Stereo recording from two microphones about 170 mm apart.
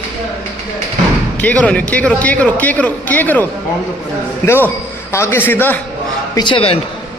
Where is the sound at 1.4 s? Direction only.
5° left (ahead or behind).